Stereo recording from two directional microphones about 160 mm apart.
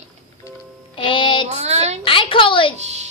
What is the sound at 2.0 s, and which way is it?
Speech, 35° left (ahead or behind).